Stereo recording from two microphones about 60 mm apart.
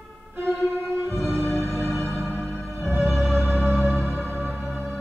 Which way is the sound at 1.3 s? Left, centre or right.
Centre.